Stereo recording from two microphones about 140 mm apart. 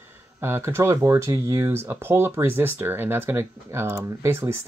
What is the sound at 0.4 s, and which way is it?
Speech, 15° right (ahead or behind).